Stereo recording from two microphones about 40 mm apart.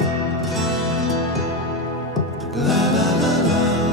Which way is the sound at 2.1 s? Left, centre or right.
Centre.